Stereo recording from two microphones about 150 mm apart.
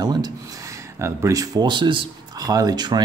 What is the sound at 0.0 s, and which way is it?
Speech, 25° right (ahead or behind).